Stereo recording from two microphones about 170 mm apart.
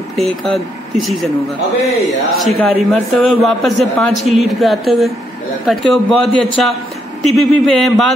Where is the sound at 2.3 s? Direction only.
Centre (ahead or behind).